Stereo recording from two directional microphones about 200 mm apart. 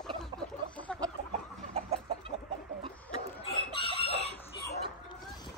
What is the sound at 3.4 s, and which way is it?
Chicken, 25° left (ahead or behind).